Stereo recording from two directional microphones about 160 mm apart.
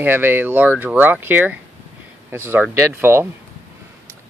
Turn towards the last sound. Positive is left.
turn(degrees=-15)  # may be behind; listen again after turning